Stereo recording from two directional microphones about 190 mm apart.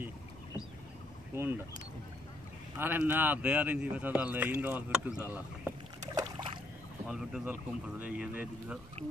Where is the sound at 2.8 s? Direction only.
10° right (ahead or behind).